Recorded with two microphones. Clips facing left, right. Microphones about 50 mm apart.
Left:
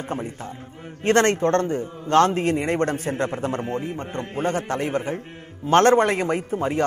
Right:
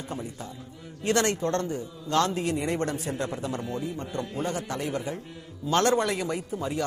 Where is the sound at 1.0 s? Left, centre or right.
Left.